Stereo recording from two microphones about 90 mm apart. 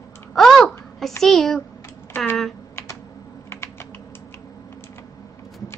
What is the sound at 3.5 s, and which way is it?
Typing, 25° left (ahead or behind).